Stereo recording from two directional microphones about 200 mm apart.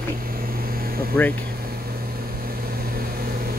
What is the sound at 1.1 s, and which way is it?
Speech, 5° left (ahead or behind).